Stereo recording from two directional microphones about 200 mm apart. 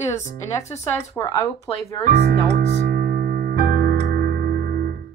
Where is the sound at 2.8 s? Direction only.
50° right (ahead or behind).